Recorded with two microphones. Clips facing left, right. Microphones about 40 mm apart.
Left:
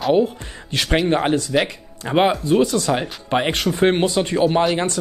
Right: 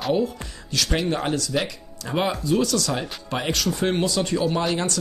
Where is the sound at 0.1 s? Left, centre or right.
Left.